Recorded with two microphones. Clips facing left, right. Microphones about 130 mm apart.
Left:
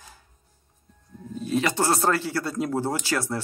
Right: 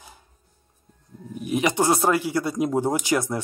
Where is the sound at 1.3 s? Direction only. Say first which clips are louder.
Right 1 dB; 15° right (ahead or behind).